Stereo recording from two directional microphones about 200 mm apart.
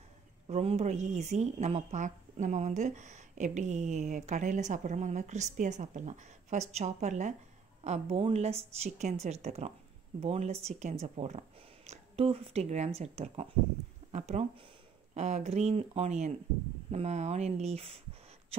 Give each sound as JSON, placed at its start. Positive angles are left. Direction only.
{"t": 0.5, "sound": "a woman's voice", "side_deg": -30}